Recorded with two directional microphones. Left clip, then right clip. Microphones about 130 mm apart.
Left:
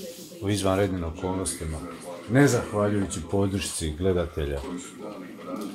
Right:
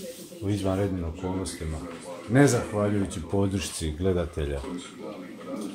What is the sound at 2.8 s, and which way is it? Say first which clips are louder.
Speech: left 1 dB; 45° left (ahead or behind).